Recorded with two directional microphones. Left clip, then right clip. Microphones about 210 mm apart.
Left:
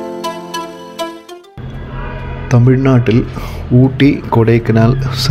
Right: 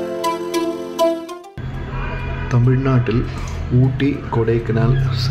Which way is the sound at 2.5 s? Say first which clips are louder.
Left 8 dB; 30° left (ahead or behind).